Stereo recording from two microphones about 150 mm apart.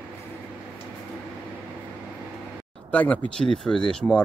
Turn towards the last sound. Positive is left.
turn(degrees=5)  # may be behind; listen again after turning